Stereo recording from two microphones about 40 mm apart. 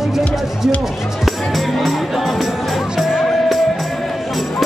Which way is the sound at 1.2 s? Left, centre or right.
Centre.